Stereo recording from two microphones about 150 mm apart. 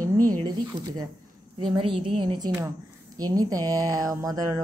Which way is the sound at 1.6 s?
35° right (ahead or behind).